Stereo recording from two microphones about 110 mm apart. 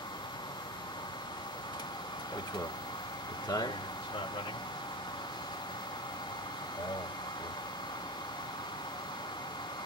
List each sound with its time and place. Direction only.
3.4 s speech: 35° left (ahead or behind)